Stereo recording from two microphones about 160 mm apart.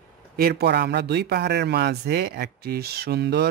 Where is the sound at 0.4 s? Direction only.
80° right.